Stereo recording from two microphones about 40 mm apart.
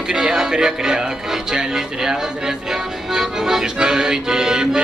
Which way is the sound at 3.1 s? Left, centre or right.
Centre.